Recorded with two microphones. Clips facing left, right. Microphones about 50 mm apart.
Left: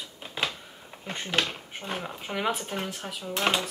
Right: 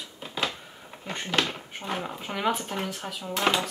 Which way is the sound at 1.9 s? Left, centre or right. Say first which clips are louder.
Right 1 dB; centre.